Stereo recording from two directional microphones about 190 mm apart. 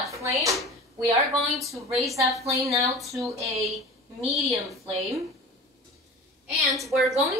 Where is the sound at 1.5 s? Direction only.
Centre (ahead or behind).